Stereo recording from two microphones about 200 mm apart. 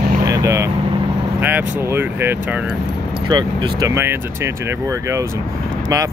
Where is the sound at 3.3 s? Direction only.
20° right (ahead or behind).